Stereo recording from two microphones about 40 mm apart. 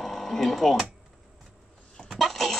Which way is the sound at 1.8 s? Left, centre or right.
Centre.